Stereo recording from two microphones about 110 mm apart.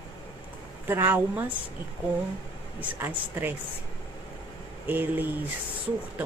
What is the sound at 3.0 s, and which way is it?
Speech, 20° right (ahead or behind).